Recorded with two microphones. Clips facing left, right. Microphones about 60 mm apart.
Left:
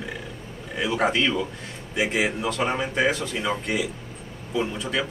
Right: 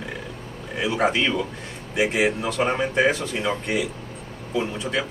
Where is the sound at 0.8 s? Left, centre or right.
Centre.